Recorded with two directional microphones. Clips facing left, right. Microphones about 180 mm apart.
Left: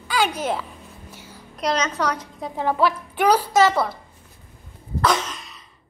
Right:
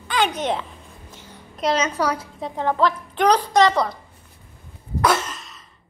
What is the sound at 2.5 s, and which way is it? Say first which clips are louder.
A child's voice: even; 10° left (ahead or behind).